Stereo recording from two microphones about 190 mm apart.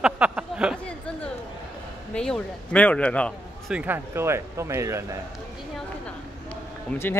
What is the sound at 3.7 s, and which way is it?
Speech, 10° right (ahead or behind).